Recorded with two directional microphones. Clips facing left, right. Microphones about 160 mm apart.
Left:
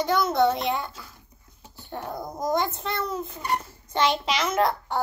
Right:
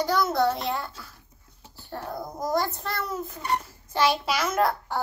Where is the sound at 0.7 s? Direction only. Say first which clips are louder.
Left 2 dB; centre (ahead or behind).